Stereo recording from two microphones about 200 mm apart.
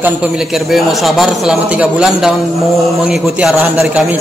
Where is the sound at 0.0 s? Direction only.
5° right (ahead or behind).